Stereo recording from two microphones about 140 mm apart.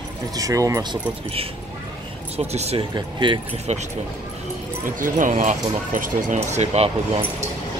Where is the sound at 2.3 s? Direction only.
50° right (ahead or behind).